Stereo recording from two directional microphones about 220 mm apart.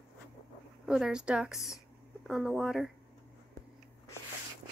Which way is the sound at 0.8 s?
5° right (ahead or behind).